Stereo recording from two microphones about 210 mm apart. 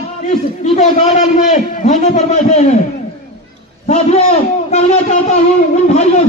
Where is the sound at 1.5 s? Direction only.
35° left (ahead or behind).